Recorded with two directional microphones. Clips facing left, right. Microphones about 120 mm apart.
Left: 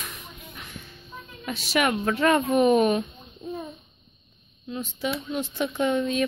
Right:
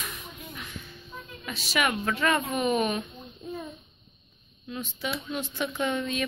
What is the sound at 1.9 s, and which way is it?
Speech, 30° left (ahead or behind).